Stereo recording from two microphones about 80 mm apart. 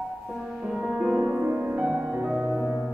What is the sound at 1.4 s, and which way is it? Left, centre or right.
Music, right.